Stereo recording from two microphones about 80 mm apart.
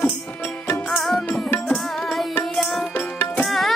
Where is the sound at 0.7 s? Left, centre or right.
Centre.